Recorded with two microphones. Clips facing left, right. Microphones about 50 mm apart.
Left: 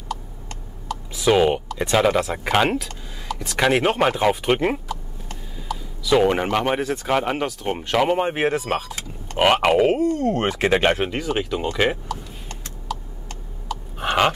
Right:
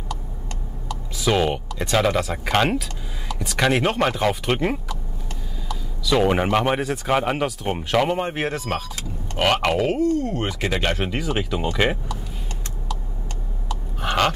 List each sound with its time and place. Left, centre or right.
1.1 s speech: centre
6.1 s speech: centre; by 10.1 s left
10.1 s speech: left
11.1 s speech: centre
13.9 s a sound: centre